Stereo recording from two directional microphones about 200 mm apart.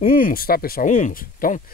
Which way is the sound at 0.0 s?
45° left (ahead or behind).